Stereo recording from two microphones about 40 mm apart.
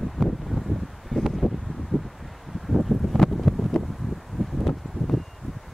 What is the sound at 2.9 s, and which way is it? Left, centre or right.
Wind, centre.